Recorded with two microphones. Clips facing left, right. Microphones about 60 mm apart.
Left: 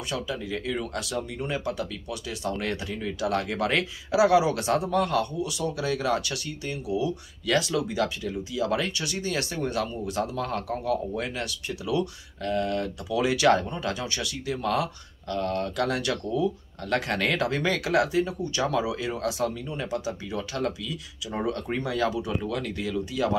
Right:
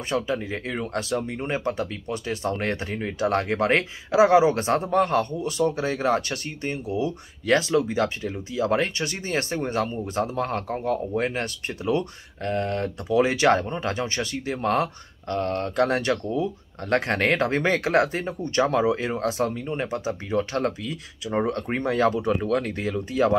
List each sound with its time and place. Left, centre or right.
0.1 s speech: right